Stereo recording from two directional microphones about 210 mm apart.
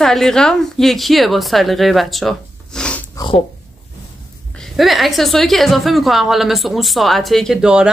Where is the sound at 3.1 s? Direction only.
25° left (ahead or behind).